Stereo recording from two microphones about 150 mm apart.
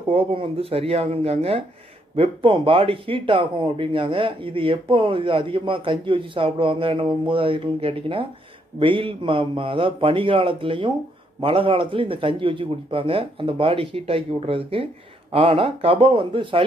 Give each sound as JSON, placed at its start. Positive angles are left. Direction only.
{"t": 0.1, "sound": "speech", "side_deg": -35}